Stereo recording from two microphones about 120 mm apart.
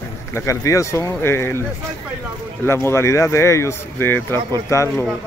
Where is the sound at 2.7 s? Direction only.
20° left (ahead or behind).